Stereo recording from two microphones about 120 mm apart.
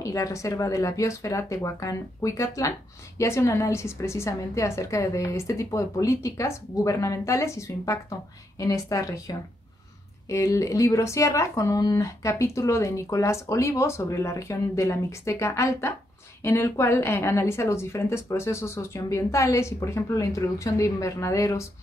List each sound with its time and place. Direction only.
0.0 s speech: 25° left (ahead or behind)